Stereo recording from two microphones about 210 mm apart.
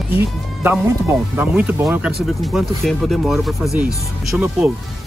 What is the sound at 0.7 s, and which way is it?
Speech, 10° right (ahead or behind).